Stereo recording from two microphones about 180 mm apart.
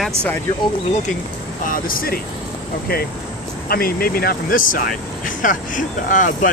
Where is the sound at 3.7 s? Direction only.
55° left (ahead or behind).